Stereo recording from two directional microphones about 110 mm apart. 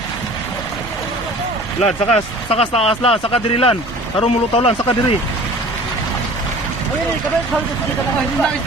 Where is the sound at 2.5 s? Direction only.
65° left (ahead or behind).